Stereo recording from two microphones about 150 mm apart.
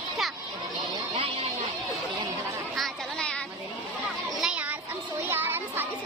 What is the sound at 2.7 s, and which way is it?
Chatter, 5° left (ahead or behind).